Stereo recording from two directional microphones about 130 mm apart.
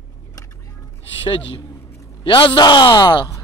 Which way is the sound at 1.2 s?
40° left (ahead or behind).